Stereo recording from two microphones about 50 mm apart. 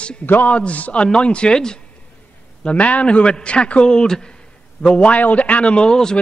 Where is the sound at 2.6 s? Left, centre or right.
Left.